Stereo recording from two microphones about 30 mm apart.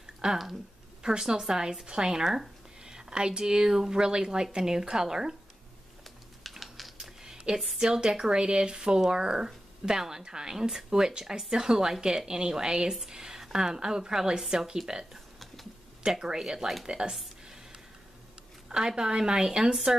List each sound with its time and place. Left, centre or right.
0.2 s speech: centre
6.5 s typing: centre
7.5 s speech: right
16.8 s speech: right
18.9 s speech: right